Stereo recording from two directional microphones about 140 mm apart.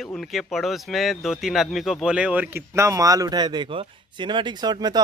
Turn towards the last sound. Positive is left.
turn(degrees=-30)  # may be behind; listen again after turning